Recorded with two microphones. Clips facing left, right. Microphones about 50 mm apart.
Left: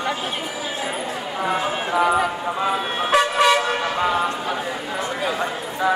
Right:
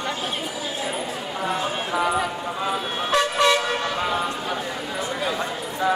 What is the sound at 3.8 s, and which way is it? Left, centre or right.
Vehicle, centre.